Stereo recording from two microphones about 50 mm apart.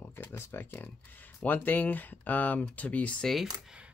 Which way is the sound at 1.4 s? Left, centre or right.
Left.